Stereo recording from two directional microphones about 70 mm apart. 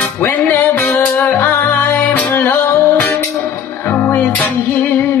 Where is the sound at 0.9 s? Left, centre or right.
Left.